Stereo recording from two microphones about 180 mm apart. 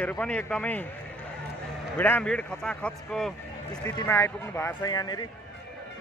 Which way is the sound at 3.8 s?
15° left (ahead or behind).